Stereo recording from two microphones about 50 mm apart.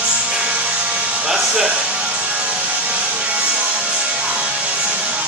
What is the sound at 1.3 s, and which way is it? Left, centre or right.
Speech, centre.